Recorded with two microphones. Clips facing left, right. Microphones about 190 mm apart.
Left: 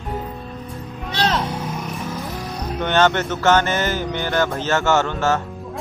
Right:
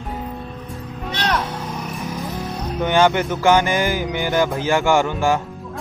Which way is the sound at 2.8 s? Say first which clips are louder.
Right 1 dB; 10° right (ahead or behind).